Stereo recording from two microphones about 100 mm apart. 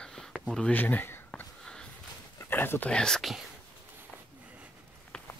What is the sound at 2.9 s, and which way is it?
Speech, 5° left (ahead or behind).